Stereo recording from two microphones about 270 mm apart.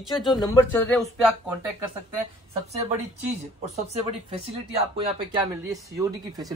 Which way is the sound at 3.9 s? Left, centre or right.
Right.